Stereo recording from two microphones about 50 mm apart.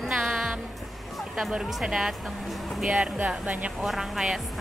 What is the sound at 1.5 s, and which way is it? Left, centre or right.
Speech, centre.